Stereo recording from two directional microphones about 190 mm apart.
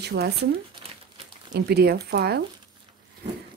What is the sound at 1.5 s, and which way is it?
Speech, 60° right (ahead or behind).